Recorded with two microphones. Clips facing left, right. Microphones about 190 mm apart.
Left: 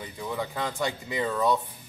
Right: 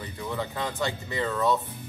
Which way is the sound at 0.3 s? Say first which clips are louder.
Even; 10° left (ahead or behind).